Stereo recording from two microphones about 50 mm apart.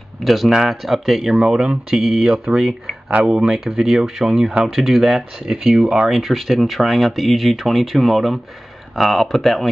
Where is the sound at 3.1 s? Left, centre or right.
Right.